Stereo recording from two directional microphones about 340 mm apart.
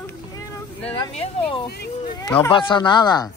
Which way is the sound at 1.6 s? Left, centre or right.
Left.